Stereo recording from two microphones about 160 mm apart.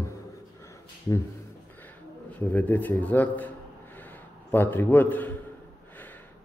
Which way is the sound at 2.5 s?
10° left (ahead or behind).